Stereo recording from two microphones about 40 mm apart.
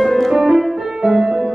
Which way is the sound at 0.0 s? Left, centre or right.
Centre.